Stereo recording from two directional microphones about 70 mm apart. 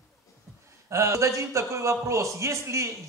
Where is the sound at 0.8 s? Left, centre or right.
Right.